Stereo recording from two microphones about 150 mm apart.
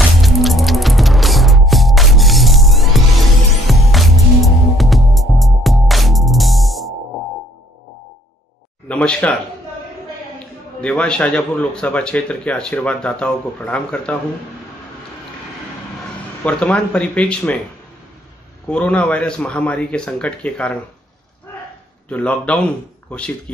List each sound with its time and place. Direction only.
0.2 s music: centre (ahead or behind)
8.8 s speech: 10° left (ahead or behind)
10.8 s speech: 5° left (ahead or behind)
16.4 s speech: 10° left (ahead or behind)
18.7 s speech: 10° left (ahead or behind)
22.1 s speech: 10° left (ahead or behind)